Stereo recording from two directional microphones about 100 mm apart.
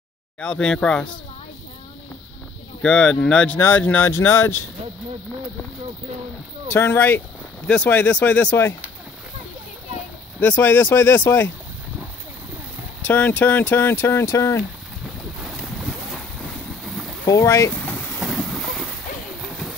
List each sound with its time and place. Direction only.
0.4 s speech: 10° left (ahead or behind)
2.8 s speech: 10° left (ahead or behind)
6.7 s speech: 20° left (ahead or behind)
10.4 s speech: 20° left (ahead or behind)
13.0 s speech: 20° left (ahead or behind)
15.8 s boat: 5° left (ahead or behind)
17.3 s speech: 30° left (ahead or behind)
17.7 s vehicle: 15° left (ahead or behind)
18.2 s boat: centre (ahead or behind)
19.4 s a sound: centre (ahead or behind)